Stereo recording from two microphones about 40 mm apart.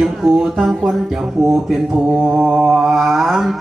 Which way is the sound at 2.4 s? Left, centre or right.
Centre.